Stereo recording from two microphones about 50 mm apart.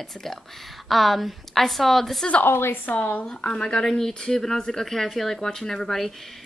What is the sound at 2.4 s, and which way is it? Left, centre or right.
Speech, left.